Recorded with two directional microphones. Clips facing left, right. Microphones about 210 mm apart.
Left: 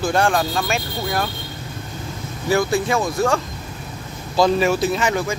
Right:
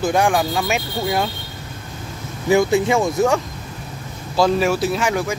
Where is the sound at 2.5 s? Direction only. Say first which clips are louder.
Right 3 dB; 20° right (ahead or behind).